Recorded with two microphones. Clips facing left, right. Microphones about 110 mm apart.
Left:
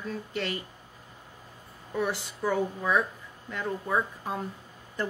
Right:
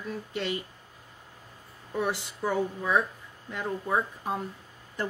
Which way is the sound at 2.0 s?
15° right (ahead or behind).